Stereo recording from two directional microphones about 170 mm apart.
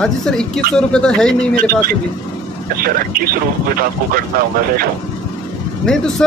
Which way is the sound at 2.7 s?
60° right (ahead or behind).